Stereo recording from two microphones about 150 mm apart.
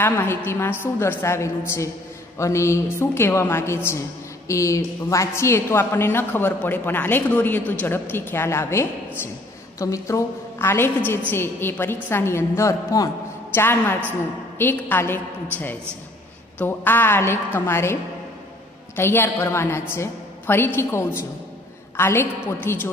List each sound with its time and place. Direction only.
0.0 s a woman's voice: 15° left (ahead or behind)
16.5 s a woman's voice: 15° left (ahead or behind)
18.9 s a woman's voice: 15° left (ahead or behind)